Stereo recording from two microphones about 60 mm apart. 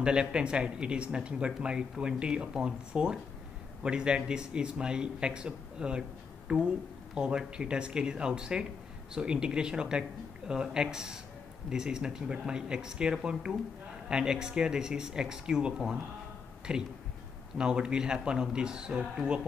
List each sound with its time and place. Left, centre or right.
0.0 s speech: centre